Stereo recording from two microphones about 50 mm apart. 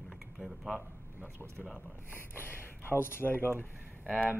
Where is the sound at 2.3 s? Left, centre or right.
Left.